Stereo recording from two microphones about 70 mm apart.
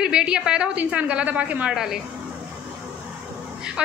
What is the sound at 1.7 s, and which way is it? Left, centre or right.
Speech, centre.